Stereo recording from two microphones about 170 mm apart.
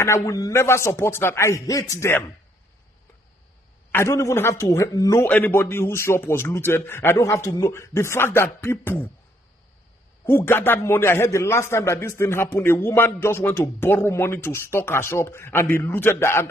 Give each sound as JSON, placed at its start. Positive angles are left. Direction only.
{"t": 0.0, "sound": "a man's voice", "side_deg": 15}
{"t": 3.9, "sound": "a man's voice", "side_deg": 15}
{"t": 10.2, "sound": "a man's voice", "side_deg": 15}